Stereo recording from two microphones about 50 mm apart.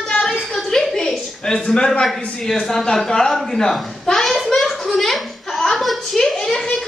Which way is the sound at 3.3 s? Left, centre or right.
Centre.